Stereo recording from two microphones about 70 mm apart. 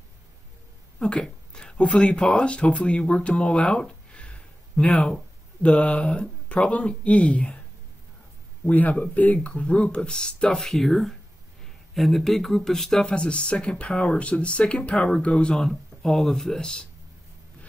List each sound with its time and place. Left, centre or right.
0.9 s speech: centre
8.6 s speech: left; by 13.0 s centre
13.0 s speech: centre